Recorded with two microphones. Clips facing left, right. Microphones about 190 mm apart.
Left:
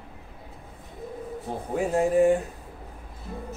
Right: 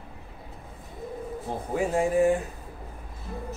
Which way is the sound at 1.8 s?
Centre (ahead or behind).